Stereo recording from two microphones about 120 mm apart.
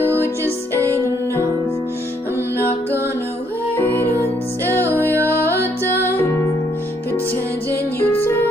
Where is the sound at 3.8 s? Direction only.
15° left (ahead or behind).